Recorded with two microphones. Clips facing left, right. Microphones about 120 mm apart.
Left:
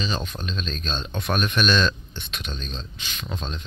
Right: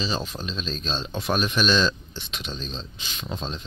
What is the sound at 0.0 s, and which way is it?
Speech, 30° right (ahead or behind).